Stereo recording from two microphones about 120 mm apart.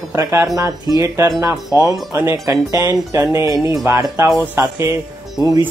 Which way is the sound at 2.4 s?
30° right (ahead or behind).